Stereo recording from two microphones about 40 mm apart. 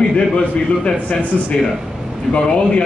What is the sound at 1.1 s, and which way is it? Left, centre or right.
Speech, left.